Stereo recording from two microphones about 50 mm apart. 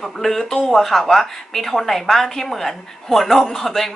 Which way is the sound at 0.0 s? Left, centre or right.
Centre.